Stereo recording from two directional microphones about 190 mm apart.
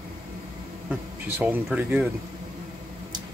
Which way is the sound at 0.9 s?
10° right (ahead or behind).